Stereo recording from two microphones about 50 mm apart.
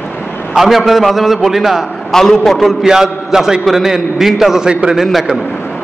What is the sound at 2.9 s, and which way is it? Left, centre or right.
A man's voice, centre.